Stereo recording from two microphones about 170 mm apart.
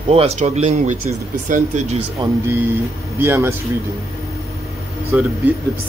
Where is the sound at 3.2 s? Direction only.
15° right (ahead or behind).